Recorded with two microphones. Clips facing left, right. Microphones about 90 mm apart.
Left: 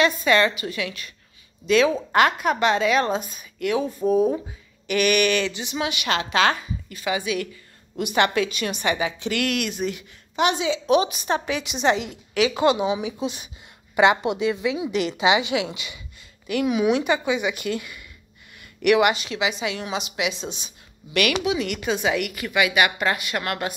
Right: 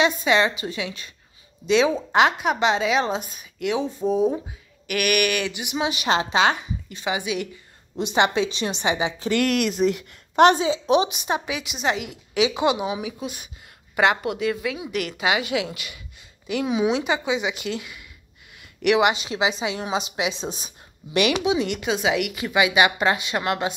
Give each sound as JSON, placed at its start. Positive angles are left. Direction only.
{"t": 0.0, "sound": "a woman's voice", "side_deg": -15}
{"t": 4.8, "sound": "a woman's voice", "side_deg": -10}
{"t": 5.9, "sound": "a woman's voice", "side_deg": -35}
{"t": 10.3, "sound": "a woman's voice", "side_deg": -55}
{"t": 10.6, "sound": "a woman's voice", "side_deg": -30}
{"t": 12.4, "sound": "a woman's voice", "side_deg": -15}
{"t": 16.6, "sound": "a woman's voice", "side_deg": -20}
{"t": 21.2, "sound": "a woman's voice", "side_deg": -25}
{"t": 21.8, "sound": "a woman's voice", "side_deg": -10}
{"t": 22.4, "sound": "a woman's voice", "side_deg": -25}